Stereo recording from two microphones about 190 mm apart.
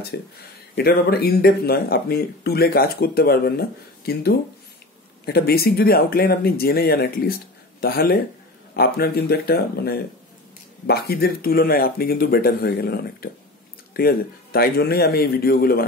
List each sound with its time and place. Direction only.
0.1 s speech: 60° left (ahead or behind)